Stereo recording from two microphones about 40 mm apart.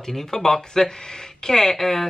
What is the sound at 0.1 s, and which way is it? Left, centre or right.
Speech, centre.